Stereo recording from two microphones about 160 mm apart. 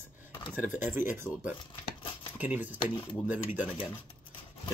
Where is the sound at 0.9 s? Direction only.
15° right (ahead or behind).